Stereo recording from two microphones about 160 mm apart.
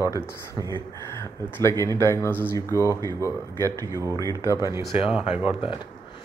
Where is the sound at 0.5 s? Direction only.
25° right (ahead or behind).